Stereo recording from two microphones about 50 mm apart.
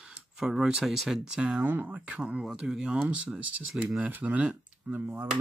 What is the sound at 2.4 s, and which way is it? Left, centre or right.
Speech, centre.